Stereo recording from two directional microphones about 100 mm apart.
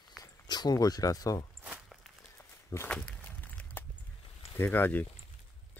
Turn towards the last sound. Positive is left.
turn(degrees=20)  # may be behind; listen again after turning